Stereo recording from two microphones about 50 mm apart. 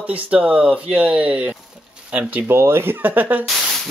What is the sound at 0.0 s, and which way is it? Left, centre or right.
Speech, right.